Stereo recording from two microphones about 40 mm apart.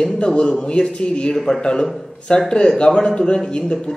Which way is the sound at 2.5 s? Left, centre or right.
Left.